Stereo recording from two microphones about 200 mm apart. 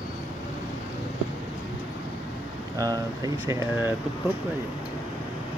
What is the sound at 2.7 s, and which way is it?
Speech, 15° right (ahead or behind).